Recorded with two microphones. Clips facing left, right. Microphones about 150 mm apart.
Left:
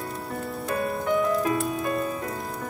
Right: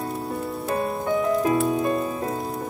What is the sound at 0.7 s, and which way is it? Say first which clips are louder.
Music: right 1 dB; 25° right (ahead or behind).